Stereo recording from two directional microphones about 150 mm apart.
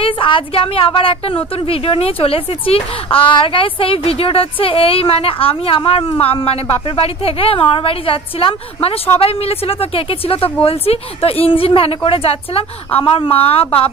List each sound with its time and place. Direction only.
0.0 s a woman's voice: 35° left (ahead or behind)